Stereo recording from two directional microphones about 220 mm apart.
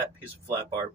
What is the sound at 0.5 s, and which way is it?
Speech, 15° right (ahead or behind).